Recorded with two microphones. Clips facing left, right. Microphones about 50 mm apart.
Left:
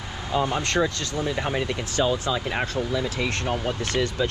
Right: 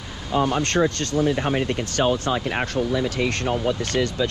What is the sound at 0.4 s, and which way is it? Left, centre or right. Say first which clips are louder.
Speech: right 3 dB; right.